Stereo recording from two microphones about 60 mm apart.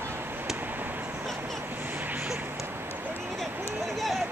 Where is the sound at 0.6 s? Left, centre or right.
Right.